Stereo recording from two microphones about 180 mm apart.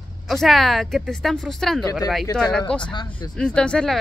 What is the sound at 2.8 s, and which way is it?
Speech, 25° left (ahead or behind).